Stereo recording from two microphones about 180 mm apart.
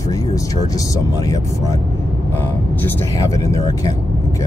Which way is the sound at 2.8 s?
15° left (ahead or behind).